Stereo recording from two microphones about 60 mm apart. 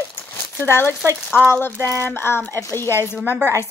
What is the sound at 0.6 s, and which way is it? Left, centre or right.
A woman's voice, left.